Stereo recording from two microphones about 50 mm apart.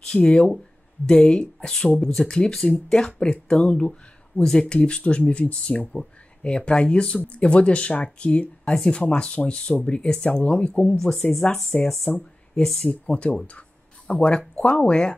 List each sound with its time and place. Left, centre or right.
0.1 s speech: centre
2.0 s speech: centre
2.2 s speech: centre
11.0 s speech: centre
11.7 s speech: centre
12.5 s speech: centre
12.8 s speech: left
13.5 s a sound: left
14.6 s speech: left